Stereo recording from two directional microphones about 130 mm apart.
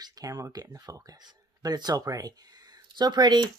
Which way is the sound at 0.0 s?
25° right (ahead or behind).